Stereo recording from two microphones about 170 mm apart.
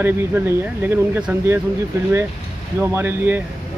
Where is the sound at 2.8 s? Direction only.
15° right (ahead or behind).